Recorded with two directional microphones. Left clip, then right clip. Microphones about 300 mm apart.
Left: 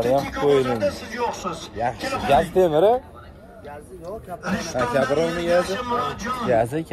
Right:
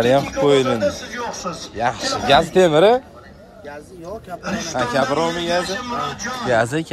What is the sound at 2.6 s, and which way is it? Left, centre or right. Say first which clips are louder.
Speech: right 4 dB; centre.